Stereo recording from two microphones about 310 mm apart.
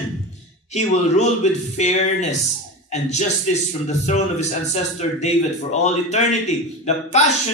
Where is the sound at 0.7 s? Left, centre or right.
Left.